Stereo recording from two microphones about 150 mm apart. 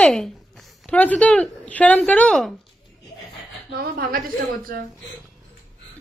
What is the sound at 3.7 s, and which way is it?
A woman's voice, 80° right.